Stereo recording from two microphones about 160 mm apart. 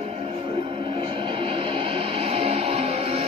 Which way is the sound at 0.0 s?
35° right (ahead or behind).